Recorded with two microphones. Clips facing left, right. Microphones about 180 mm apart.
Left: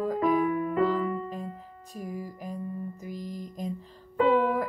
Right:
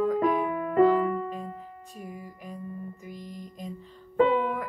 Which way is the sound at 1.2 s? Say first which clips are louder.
Right 1 dB; 40° left (ahead or behind).